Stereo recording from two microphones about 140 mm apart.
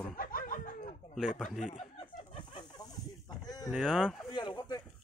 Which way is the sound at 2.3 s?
30° left (ahead or behind).